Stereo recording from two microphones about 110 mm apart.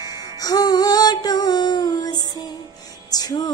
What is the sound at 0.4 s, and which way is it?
Female singing, 35° left (ahead or behind).